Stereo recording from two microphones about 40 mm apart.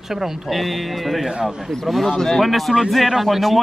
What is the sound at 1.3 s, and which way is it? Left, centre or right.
Speech, centre.